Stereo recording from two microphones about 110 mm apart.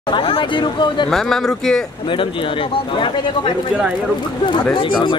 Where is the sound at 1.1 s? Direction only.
5° left (ahead or behind).